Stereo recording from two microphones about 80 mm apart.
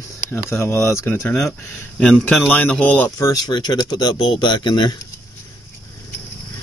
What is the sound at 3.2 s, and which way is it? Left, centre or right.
Speech, left.